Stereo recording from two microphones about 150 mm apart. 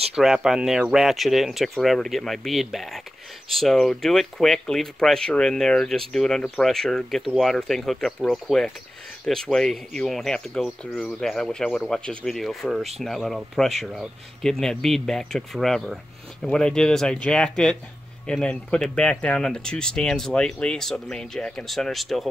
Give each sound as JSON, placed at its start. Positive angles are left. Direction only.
{"t": 0.1, "sound": "speech", "side_deg": -5}